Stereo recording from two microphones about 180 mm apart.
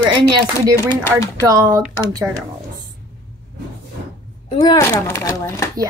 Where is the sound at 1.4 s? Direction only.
20° right (ahead or behind).